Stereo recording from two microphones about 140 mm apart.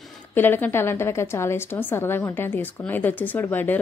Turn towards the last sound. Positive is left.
turn(degrees=15)  # may be behind; listen again after turning